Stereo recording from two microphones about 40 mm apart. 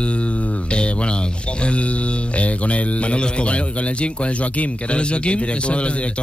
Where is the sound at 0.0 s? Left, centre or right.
Left.